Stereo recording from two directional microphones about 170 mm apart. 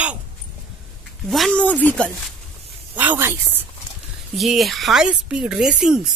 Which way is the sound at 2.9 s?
10° right (ahead or behind).